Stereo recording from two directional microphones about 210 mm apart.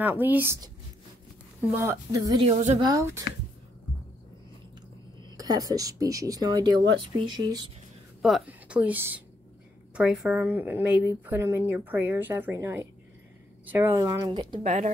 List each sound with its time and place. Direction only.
0.0 s speech: 10° right (ahead or behind)
2.5 s speech: 35° right (ahead or behind)
2.8 s speech: 15° right (ahead or behind)
5.4 s speech: 15° right (ahead or behind)
8.2 s a woman's voice: centre (ahead or behind); by 14.6 s 20° right (ahead or behind)
14.6 s speech: 35° right (ahead or behind)